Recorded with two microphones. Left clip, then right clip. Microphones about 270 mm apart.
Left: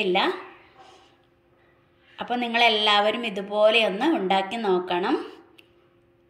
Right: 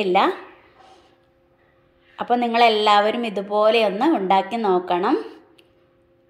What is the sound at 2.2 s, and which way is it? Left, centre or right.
A woman's voice, centre.